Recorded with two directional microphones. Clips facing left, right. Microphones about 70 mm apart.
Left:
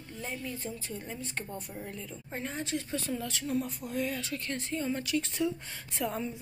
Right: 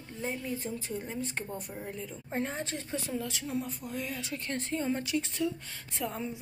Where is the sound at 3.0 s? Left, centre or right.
Centre.